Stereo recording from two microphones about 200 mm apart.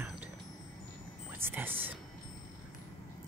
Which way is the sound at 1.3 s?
10° right (ahead or behind).